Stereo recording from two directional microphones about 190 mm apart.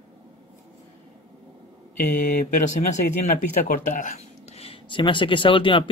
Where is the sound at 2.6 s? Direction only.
40° left (ahead or behind).